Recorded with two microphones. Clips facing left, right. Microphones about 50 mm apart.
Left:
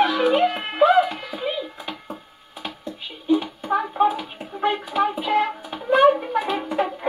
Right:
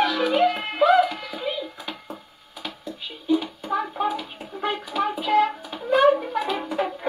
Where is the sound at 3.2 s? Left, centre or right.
Left.